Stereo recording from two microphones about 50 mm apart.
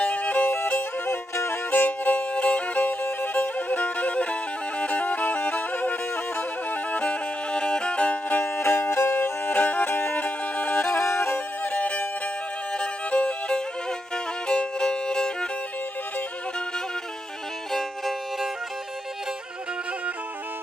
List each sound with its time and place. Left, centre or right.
0.0 s music: left
1.3 s music: left
1.7 s music: left
8.5 s music: left
11.1 s music: left
11.3 s music: left
12.7 s violin: left
17.6 s violin: centre